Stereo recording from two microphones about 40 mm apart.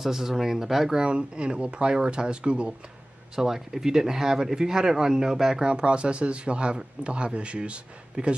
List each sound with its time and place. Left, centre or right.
0.0 s speech: centre
0.9 s a man's voice: right
3.3 s speech: centre
5.7 s a man's voice: right